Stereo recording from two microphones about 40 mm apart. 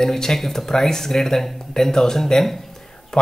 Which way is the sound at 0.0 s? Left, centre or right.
Centre.